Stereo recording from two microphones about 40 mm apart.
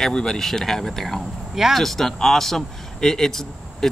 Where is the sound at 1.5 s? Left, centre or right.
Centre.